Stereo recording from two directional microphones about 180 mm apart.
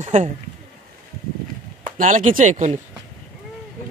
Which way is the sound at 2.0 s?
45° right (ahead or behind).